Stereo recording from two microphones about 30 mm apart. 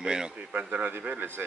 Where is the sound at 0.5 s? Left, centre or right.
Right.